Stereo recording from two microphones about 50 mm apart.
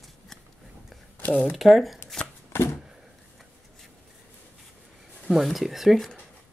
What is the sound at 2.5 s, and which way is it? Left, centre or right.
Shuffling cards, left.